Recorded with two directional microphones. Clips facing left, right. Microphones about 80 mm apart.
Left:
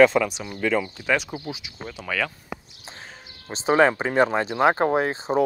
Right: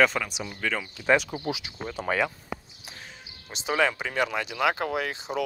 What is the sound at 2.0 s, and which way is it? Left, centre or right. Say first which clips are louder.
Speech: right 4 dB; right.